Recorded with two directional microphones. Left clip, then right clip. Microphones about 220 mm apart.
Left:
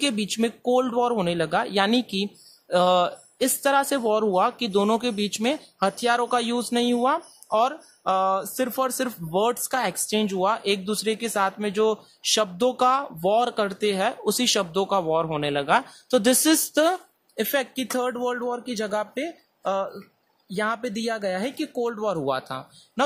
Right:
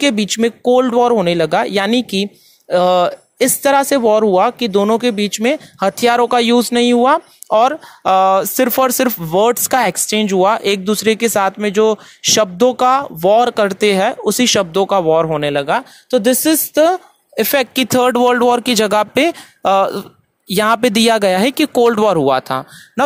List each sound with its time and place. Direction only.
0.0 s speech: 25° right (ahead or behind)
17.4 s speech: 35° right (ahead or behind)